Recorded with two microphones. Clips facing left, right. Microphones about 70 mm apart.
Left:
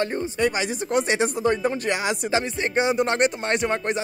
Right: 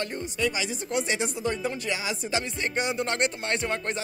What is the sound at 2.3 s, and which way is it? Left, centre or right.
Music, left.